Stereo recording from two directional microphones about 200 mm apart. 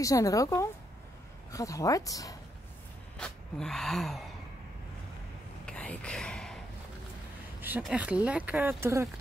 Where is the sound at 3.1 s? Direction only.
5° left (ahead or behind).